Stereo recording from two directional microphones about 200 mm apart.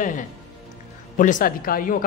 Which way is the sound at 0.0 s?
40° left (ahead or behind).